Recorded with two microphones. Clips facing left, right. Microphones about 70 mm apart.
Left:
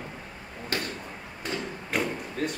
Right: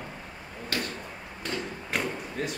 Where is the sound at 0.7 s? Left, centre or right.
Left.